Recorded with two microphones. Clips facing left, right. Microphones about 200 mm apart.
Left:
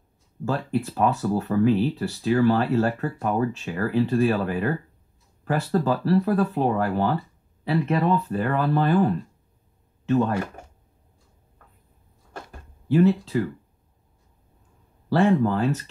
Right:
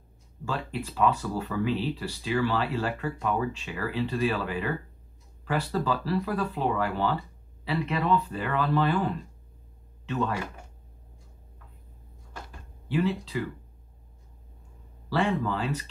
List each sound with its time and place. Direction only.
0.5 s speech: 45° left (ahead or behind)
10.2 s speech: 45° left (ahead or behind)
12.4 s a sound: 45° left (ahead or behind)
15.0 s speech: 50° left (ahead or behind)